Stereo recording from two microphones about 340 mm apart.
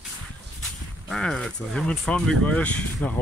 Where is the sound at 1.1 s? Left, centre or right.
Centre.